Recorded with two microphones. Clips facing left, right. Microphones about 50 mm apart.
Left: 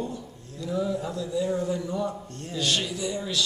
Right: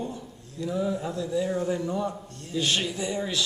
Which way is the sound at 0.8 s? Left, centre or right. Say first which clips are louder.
Even; centre.